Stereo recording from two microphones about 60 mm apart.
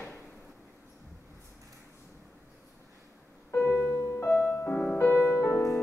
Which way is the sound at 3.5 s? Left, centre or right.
Left.